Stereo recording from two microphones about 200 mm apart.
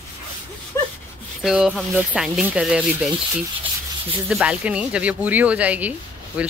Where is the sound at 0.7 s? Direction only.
15° left (ahead or behind).